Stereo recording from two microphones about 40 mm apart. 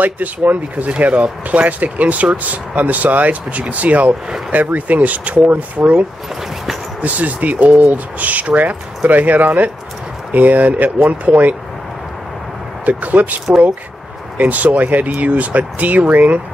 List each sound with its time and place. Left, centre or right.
0.0 s speech: right
7.0 s speech: right
12.8 s speech: right
14.4 s speech: right